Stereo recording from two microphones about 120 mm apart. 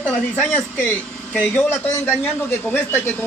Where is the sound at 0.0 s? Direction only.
10° left (ahead or behind).